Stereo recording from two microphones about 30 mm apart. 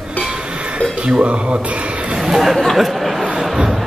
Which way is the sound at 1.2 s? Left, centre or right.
Right.